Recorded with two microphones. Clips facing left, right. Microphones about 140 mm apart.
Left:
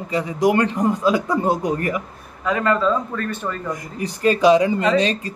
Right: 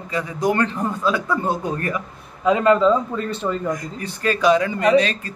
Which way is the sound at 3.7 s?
20° left (ahead or behind).